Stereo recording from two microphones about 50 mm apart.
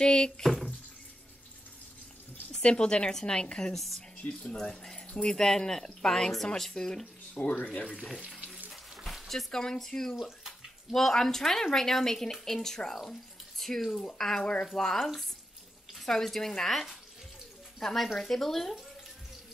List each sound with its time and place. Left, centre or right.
0.0 s speech: centre
2.6 s speech: centre
3.7 s speech: centre
4.2 s speech: left
4.6 s speech: centre
7.4 s speech: left
8.6 s a sound: centre
9.5 s speech: centre
10.4 s bathtub: centre
11.0 s speech: centre
14.4 s speech: centre
14.7 s speech: centre